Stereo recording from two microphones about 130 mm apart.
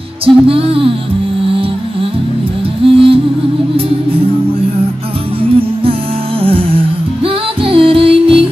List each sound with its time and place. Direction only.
0.2 s music: 45° right (ahead or behind)
6.4 s music: 45° right (ahead or behind)